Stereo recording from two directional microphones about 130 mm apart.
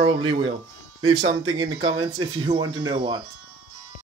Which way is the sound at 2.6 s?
40° right (ahead or behind).